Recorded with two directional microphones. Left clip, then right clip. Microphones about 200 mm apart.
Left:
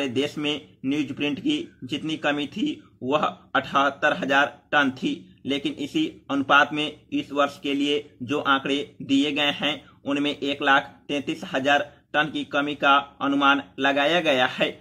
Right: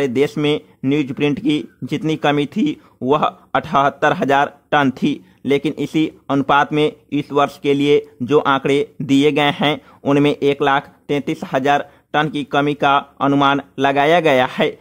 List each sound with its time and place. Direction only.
0.0 s speech: 45° right (ahead or behind)